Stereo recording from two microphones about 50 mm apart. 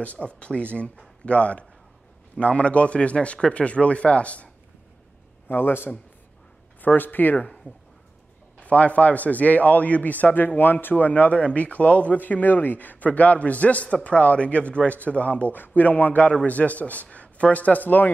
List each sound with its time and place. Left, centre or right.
0.0 s speech: left
5.5 s a man's voice: left
8.5 s speech: left
15.5 s speech: left